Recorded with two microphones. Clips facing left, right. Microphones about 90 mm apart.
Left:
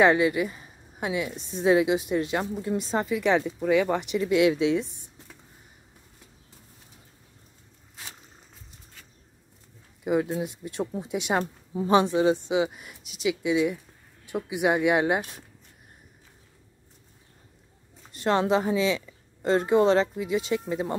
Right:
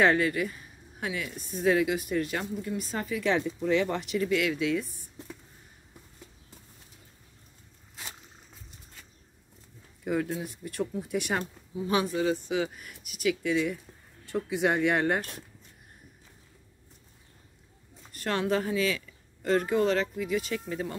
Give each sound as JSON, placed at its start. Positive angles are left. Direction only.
{"t": 0.0, "sound": "a woman's voice", "side_deg": 15}
{"t": 10.0, "sound": "a woman's voice", "side_deg": 15}
{"t": 11.7, "sound": "a woman's voice", "side_deg": 30}
{"t": 18.1, "sound": "a woman's voice", "side_deg": 25}